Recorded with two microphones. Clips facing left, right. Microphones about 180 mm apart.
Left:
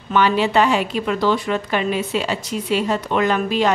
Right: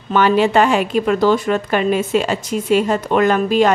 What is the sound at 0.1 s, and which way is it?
Speech, 50° right (ahead or behind).